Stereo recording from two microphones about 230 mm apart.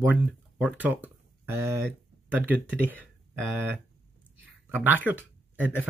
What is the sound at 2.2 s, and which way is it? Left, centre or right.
Speech, centre.